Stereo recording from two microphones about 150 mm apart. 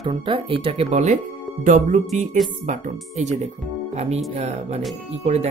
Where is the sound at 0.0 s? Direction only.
35° right (ahead or behind).